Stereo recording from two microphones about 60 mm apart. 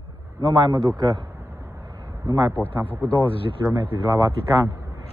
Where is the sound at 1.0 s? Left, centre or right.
Right.